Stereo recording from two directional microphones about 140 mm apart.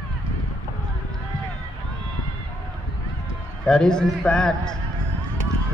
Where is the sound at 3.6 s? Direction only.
5° left (ahead or behind).